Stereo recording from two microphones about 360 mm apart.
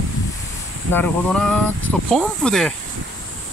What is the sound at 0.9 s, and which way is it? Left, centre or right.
Speech, centre.